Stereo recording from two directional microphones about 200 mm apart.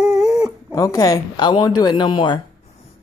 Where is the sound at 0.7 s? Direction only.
15° left (ahead or behind).